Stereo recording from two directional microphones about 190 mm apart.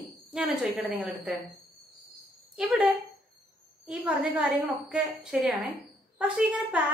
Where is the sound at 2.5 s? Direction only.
5° right (ahead or behind).